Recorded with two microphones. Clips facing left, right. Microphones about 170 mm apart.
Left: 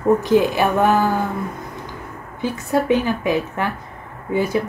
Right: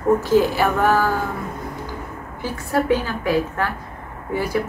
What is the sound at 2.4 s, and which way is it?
A woman's voice, 20° left (ahead or behind).